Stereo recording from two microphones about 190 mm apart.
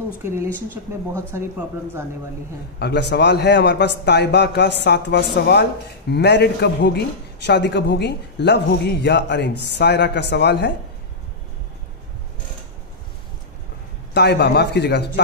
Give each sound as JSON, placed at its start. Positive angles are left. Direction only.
{"t": 0.7, "sound": "speech", "side_deg": -15}
{"t": 2.8, "sound": "a man's voice", "side_deg": 60}
{"t": 14.1, "sound": "a man's voice", "side_deg": 60}